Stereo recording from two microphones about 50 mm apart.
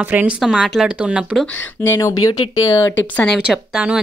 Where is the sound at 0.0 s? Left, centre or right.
Right.